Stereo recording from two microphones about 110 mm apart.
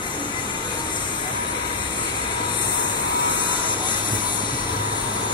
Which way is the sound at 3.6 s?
45° left (ahead or behind).